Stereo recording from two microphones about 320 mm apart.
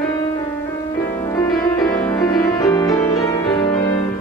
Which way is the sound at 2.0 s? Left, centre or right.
Centre.